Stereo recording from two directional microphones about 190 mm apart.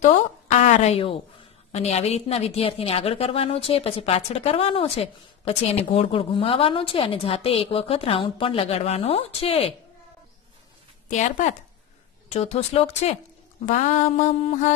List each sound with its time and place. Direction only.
0.0 s a woman's voice: 40° left (ahead or behind)
11.1 s a woman's voice: 40° left (ahead or behind)